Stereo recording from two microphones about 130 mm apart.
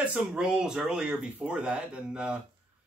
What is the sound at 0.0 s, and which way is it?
Speech, 10° right (ahead or behind).